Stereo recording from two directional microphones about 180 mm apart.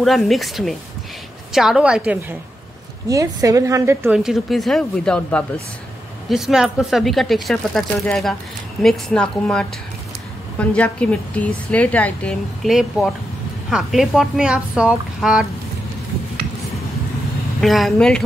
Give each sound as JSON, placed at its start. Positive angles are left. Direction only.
{"t": 0.0, "sound": "speech", "side_deg": 0}
{"t": 3.1, "sound": "a woman's voice", "side_deg": -20}
{"t": 4.2, "sound": "a woman's voice", "side_deg": 0}
{"t": 17.6, "sound": "speech", "side_deg": 0}